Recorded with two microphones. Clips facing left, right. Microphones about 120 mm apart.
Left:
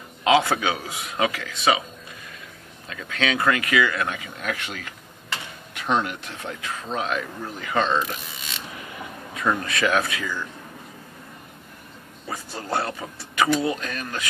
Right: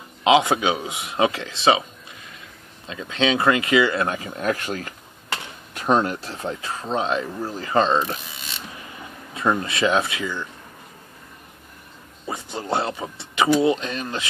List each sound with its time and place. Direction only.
0.2 s speech: 20° right (ahead or behind)
2.9 s speech: 25° right (ahead or behind)
9.3 s speech: 25° right (ahead or behind)
12.3 s speech: 20° right (ahead or behind)